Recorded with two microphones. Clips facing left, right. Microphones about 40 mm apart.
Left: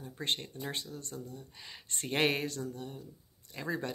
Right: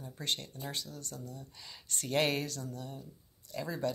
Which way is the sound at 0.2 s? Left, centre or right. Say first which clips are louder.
Left 2 dB; left.